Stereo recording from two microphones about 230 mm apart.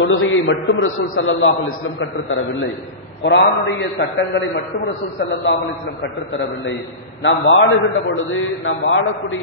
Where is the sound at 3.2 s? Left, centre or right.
Left.